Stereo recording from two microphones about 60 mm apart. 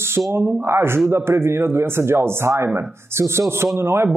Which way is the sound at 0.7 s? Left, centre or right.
Right.